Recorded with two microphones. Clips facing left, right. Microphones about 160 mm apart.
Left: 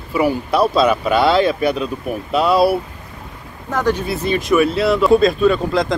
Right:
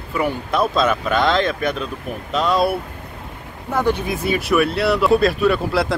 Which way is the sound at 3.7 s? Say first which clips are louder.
Left 1 dB; 15° right (ahead or behind).